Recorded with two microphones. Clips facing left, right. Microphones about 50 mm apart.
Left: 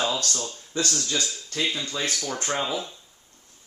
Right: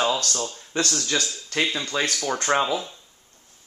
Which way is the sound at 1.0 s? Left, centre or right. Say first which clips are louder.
Right 2 dB; right.